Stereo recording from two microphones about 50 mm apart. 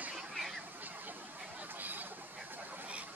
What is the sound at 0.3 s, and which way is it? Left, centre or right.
Fowl, centre.